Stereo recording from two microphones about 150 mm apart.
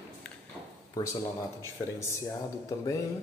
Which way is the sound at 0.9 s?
20° left (ahead or behind).